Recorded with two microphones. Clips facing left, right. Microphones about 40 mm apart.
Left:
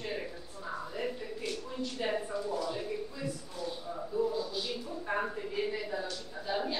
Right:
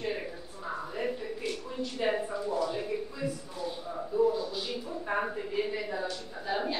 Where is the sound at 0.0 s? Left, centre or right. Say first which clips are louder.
Right 3 dB; centre.